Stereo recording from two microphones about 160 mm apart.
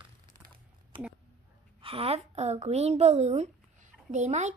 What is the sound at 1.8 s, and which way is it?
A woman's voice, 35° right (ahead or behind).